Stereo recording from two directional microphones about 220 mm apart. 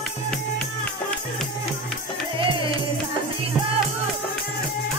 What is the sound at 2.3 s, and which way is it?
Music, 25° right (ahead or behind).